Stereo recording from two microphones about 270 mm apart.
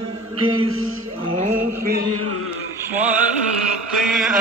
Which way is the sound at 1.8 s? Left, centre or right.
Right.